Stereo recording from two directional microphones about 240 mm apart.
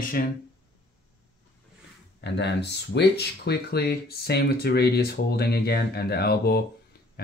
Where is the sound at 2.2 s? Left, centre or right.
Left.